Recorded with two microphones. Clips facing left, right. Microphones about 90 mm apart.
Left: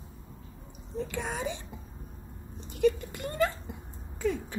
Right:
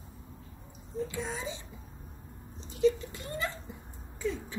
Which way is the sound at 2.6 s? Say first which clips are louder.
Left 1 dB; 60° left (ahead or behind).